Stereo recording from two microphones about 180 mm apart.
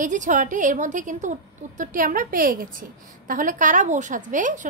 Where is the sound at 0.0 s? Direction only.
45° right (ahead or behind).